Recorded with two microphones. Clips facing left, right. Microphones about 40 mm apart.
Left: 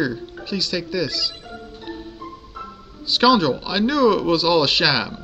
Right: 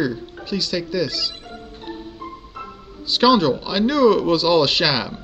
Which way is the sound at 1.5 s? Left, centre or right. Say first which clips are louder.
Even; right.